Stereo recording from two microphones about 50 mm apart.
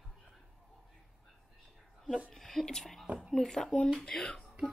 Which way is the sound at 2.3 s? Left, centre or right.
Centre.